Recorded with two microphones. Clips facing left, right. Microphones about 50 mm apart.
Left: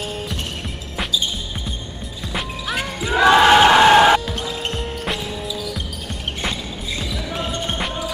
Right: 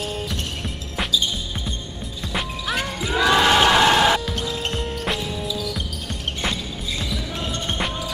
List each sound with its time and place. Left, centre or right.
2.3 s music: centre
3.2 s music: left
4.3 s music: centre
7.4 s basketball bounce: centre